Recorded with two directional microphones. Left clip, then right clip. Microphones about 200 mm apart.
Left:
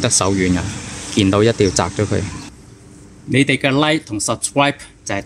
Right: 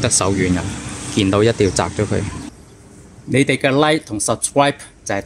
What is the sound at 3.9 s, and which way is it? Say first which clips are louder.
Speech: right 1 dB; 5° left (ahead or behind).